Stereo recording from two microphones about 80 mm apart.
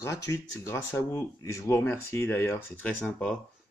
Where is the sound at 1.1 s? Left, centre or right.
Left.